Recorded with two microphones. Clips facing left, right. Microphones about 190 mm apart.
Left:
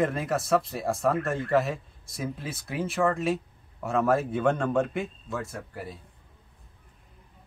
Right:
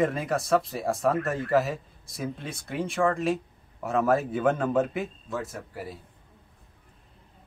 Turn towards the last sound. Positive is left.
turn(degrees=0)  # may be behind; listen again after turning